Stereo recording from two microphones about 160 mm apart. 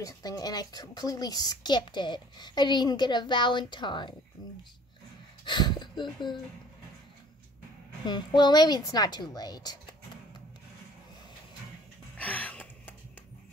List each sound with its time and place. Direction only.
0.0 s a woman's voice: 25° left (ahead or behind)
8.0 s a woman's voice: 25° left (ahead or behind)
12.2 s a sound: 10° left (ahead or behind)